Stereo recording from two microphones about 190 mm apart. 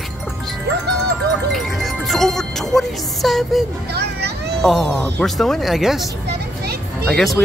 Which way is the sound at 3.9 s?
60° right (ahead or behind).